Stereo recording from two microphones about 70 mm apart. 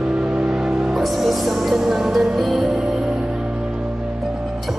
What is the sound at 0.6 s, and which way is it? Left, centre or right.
Music, centre.